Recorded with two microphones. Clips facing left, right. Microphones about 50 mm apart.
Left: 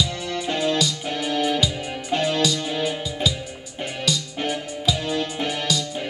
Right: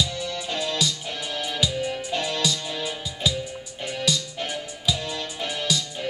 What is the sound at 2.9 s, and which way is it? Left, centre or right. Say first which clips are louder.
Music: left 3 dB; centre.